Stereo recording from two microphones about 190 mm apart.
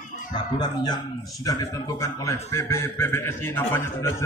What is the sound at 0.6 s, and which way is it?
Speech, 20° left (ahead or behind).